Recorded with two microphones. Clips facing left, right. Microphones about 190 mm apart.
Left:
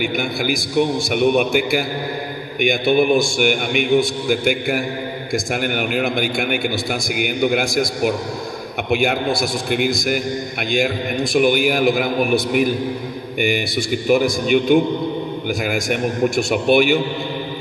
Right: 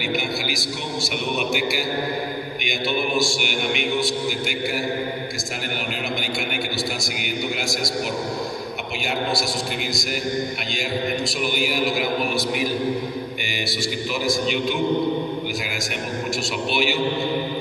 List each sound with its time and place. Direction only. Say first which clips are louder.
0.0 s a man's voice: left 4 dB; 50° left (ahead or behind)
11.3 s a man's voice: left 8 dB; 55° left (ahead or behind)
14.0 s a man's voice: left 8 dB; 55° left (ahead or behind)